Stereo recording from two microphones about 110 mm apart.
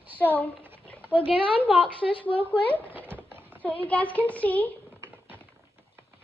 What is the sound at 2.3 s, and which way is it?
Speech, 15° left (ahead or behind).